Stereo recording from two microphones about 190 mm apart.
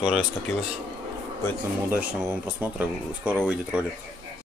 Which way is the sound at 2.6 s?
10° right (ahead or behind).